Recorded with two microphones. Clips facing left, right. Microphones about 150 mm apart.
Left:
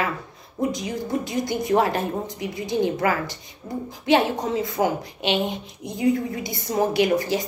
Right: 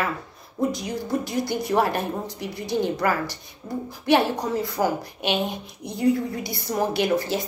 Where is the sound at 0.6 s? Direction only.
20° left (ahead or behind).